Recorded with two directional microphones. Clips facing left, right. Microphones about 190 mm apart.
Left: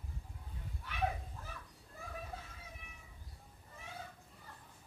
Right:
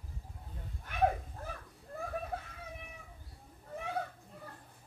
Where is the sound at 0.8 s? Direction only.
50° right (ahead or behind).